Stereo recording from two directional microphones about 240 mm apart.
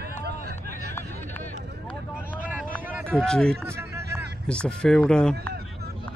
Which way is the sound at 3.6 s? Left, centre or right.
Centre.